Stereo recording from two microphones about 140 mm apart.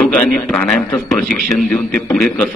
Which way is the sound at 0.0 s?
10° left (ahead or behind).